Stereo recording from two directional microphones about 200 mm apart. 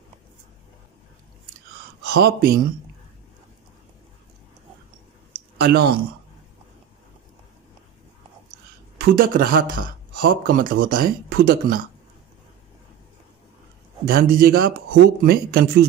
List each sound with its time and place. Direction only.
2.0 s a man's voice: 55° right (ahead or behind)
5.6 s speech: 55° right (ahead or behind)
8.9 s a man's voice: 45° right (ahead or behind)
14.0 s a man's voice: 45° right (ahead or behind)